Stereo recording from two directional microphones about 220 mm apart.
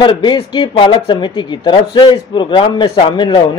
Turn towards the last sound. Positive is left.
turn(degrees=20)  # may be behind; listen again after turning